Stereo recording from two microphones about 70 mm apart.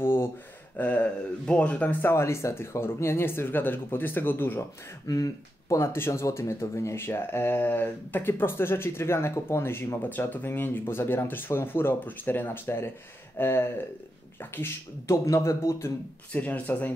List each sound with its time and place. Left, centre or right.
0.0 s a sound: left
0.7 s speech: left
2.0 s speech: left
5.0 s speech: left
5.8 s speech: left
15.0 s speech: left
16.3 s speech: left